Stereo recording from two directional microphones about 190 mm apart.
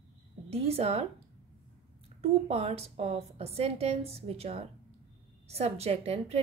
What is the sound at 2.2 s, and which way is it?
A woman's voice, 35° right (ahead or behind).